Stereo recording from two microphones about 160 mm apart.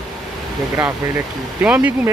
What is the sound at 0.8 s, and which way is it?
Speech, 15° right (ahead or behind).